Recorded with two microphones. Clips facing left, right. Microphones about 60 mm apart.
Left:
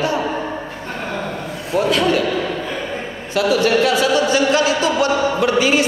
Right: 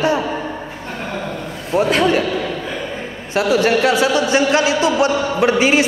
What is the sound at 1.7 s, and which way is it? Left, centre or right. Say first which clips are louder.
Speech: right 1 dB; right.